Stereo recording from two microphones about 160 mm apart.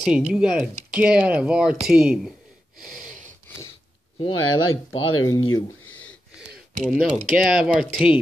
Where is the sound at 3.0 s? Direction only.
50° right (ahead or behind).